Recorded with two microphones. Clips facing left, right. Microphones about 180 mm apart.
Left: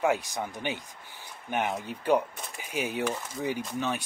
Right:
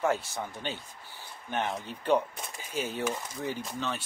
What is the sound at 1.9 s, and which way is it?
Speech, 10° left (ahead or behind).